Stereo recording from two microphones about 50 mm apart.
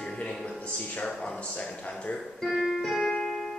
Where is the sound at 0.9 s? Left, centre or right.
Centre.